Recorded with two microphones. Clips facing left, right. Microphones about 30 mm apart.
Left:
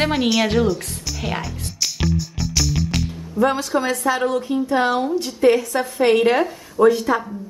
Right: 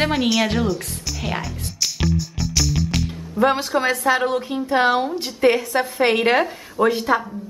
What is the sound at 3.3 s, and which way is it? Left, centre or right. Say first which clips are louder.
A woman's voice: even; right.